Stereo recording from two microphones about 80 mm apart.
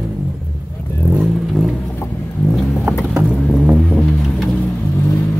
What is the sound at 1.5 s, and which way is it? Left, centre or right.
Vehicle, centre.